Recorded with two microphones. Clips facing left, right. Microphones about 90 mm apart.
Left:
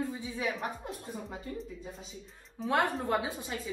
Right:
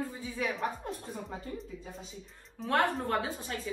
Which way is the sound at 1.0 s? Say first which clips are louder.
Even; centre (ahead or behind).